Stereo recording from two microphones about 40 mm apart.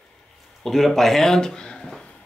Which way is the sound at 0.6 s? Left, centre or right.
Centre.